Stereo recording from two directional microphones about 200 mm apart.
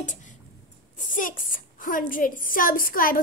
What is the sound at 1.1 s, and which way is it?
A woman's voice, 40° left (ahead or behind).